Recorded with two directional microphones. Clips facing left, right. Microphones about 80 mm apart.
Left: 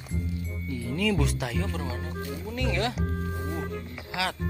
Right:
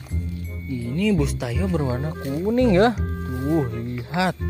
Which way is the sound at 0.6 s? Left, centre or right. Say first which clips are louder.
Right 5 dB; centre.